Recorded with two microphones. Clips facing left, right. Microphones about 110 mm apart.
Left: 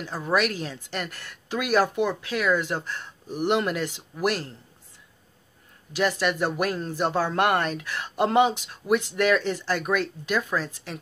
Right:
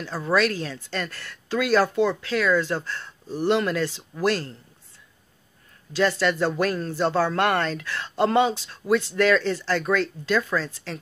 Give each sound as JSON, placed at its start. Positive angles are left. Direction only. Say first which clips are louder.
{"t": 0.0, "sound": "speech", "louder": "right 2 dB", "side_deg": 15}
{"t": 5.9, "sound": "speech", "louder": "right 2 dB", "side_deg": 15}